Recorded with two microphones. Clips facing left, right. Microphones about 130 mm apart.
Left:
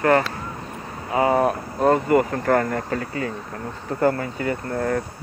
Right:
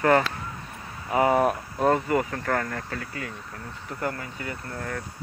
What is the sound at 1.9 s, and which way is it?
Speech, 50° left (ahead or behind).